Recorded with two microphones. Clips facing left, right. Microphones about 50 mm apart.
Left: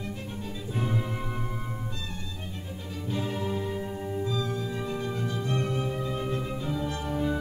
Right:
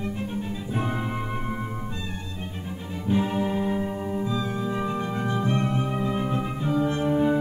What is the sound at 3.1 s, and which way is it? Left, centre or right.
Music, right.